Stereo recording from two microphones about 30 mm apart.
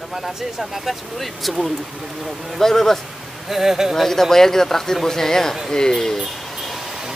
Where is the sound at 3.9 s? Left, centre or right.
Centre.